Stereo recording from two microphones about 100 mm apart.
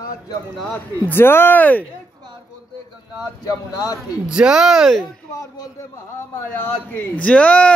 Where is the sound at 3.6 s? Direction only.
40° left (ahead or behind).